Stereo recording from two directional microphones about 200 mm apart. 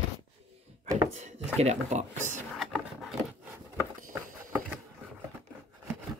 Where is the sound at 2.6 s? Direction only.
Centre (ahead or behind).